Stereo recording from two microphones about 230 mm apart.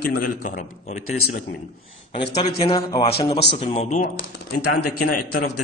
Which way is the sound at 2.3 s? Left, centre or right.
Left.